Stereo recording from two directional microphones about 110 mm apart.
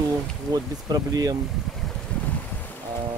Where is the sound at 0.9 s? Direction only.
35° right (ahead or behind).